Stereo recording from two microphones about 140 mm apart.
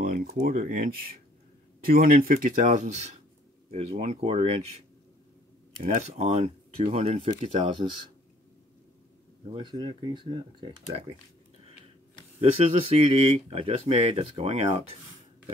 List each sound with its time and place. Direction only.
0.0 s speech: 85° right; by 4.6 s 45° right (ahead or behind)
5.9 s speech: 50° right (ahead or behind)
9.5 s speech: 35° right (ahead or behind)
12.4 s speech: 45° right (ahead or behind)